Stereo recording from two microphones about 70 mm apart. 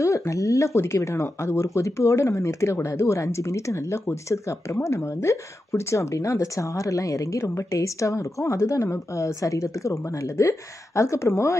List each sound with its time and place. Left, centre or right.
0.3 s speech: left